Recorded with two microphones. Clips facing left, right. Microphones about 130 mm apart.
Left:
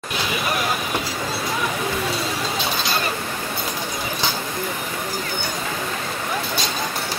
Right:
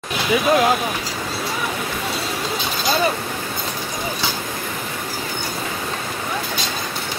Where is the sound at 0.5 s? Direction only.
90° right.